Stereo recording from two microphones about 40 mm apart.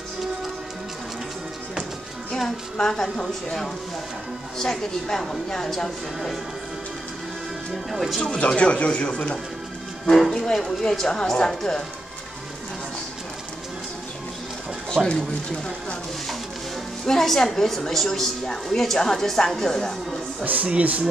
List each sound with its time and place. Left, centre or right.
2.3 s a woman's voice: centre
7.9 s speech: centre
8.3 s speech: left
10.3 s a woman's voice: centre
15.0 s speech: right
17.0 s a woman's voice: centre
20.4 s speech: right